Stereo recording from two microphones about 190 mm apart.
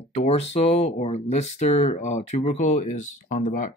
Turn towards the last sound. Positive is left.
turn(degrees=45)  # may be behind; listen again after turning